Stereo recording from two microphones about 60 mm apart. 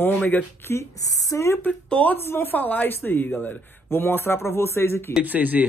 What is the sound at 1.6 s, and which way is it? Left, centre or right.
Speech, left.